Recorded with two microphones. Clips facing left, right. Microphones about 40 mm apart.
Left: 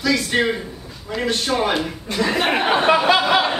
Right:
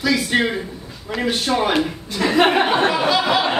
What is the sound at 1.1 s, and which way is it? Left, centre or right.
Speech, centre.